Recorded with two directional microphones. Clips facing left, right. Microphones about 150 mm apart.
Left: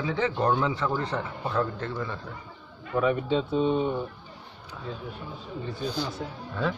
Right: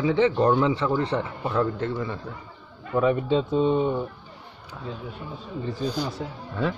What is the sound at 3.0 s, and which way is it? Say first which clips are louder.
Speech: right 3 dB; 35° right (ahead or behind).